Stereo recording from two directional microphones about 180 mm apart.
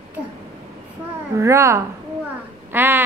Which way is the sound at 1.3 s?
15° right (ahead or behind).